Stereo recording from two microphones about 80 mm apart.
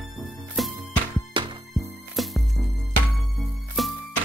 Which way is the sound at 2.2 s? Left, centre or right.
Centre.